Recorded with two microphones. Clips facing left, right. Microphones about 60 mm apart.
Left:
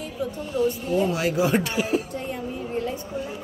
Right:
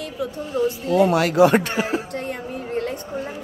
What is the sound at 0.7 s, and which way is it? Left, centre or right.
Speech, right.